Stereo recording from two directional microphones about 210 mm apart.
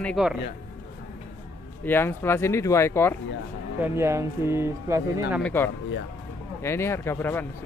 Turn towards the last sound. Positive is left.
turn(degrees=10)  # may be behind; listen again after turning